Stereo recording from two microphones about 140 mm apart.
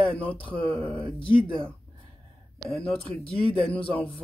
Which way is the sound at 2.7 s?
10° left (ahead or behind).